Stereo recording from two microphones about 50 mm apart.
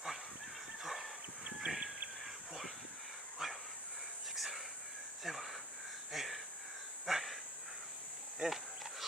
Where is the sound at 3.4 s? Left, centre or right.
Centre.